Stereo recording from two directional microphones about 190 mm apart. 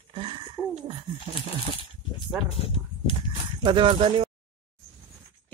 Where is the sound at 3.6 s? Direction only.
25° right (ahead or behind).